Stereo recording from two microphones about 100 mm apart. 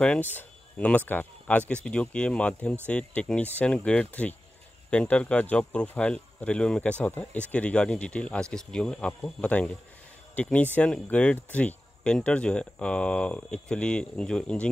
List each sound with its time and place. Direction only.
0.0 s speech: 10° left (ahead or behind)